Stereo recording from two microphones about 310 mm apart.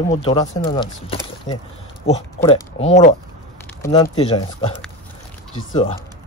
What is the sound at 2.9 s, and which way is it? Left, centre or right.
Speech, left.